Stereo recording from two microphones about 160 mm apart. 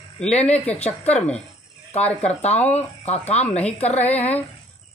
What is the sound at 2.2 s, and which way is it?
Speech, 40° left (ahead or behind).